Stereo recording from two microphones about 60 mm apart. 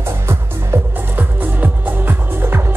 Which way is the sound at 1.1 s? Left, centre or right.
Right.